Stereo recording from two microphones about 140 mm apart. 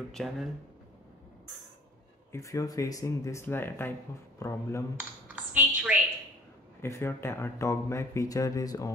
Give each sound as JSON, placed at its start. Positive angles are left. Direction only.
{"t": 0.1, "sound": "speech", "side_deg": 0}
{"t": 2.3, "sound": "speech", "side_deg": 25}
{"t": 4.9, "sound": "speech", "side_deg": -10}
{"t": 6.8, "sound": "speech", "side_deg": 20}